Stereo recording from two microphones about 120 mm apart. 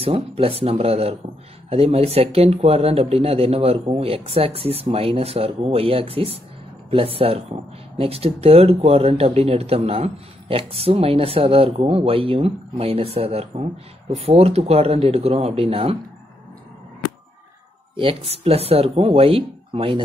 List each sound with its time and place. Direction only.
0.0 s speech: 50° right (ahead or behind)
17.9 s speech: 50° right (ahead or behind)